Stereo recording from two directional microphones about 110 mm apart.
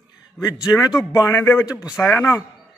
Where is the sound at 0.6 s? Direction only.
35° left (ahead or behind).